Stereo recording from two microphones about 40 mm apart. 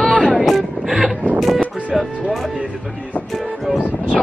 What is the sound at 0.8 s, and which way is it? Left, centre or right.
Vehicle, centre.